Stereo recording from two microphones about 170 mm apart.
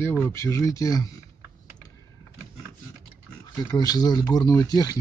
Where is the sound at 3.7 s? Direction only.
20° left (ahead or behind).